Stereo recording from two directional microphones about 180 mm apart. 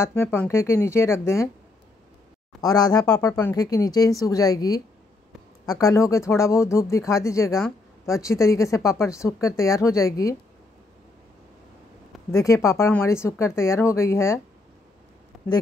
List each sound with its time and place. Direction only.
0.0 s speech: 15° left (ahead or behind)
2.6 s speech: 20° left (ahead or behind)
12.3 s speech: 15° left (ahead or behind)
15.3 s a sound: centre (ahead or behind)